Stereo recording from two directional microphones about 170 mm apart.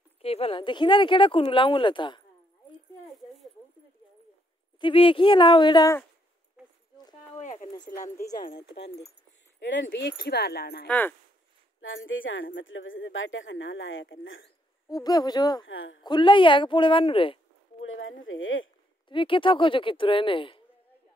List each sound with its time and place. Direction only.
0.2 s speech: 35° left (ahead or behind)
4.7 s speech: 30° left (ahead or behind)
7.3 s a sound: 45° left (ahead or behind)
8.0 s speech: 20° left (ahead or behind)
9.6 s speech: 90° left; by 10.9 s 70° left (ahead or behind)
10.9 s speech: 10° left (ahead or behind)
13.0 s a woman's voice: 90° left
14.9 s speech: 20° left (ahead or behind)
19.0 s speech: 30° left (ahead or behind)